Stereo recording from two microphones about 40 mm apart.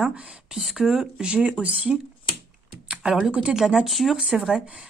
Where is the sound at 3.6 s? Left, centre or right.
Centre.